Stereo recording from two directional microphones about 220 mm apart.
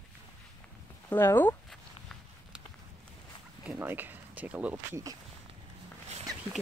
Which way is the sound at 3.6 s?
5° right (ahead or behind).